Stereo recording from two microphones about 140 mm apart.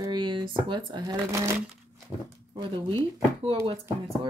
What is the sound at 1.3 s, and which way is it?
Speech, 20° right (ahead or behind).